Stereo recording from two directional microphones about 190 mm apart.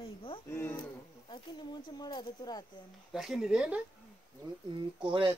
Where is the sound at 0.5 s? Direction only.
10° left (ahead or behind).